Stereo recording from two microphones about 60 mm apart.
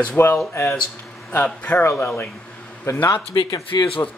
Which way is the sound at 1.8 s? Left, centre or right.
Left.